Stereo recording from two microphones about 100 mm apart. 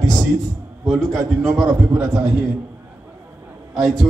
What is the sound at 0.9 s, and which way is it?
Speech, 30° right (ahead or behind).